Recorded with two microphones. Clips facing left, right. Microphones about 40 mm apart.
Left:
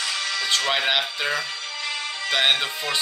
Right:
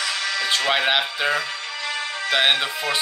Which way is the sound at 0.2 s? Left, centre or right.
Right.